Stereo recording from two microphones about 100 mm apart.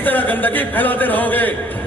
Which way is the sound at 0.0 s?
20° left (ahead or behind).